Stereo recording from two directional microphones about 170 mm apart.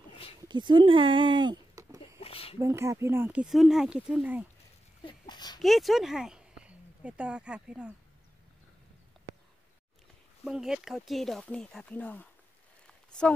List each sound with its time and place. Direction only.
0.5 s speech: 25° right (ahead or behind)
2.1 s a sound: 35° left (ahead or behind)
2.6 s speech: 15° right (ahead or behind)
5.0 s a sound: 25° left (ahead or behind)
5.6 s speech: centre (ahead or behind)
10.4 s speech: 5° right (ahead or behind)